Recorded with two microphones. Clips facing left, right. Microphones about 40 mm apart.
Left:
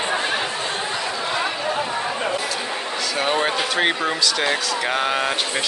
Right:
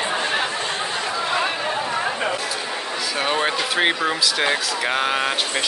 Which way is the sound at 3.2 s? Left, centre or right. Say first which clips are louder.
Left 1 dB; centre.